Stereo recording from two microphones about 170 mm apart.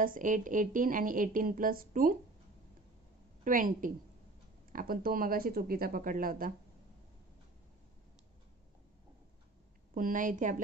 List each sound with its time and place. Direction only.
0.0 s speech: 50° right (ahead or behind)
3.4 s speech: 55° right (ahead or behind)
9.9 s speech: 50° right (ahead or behind)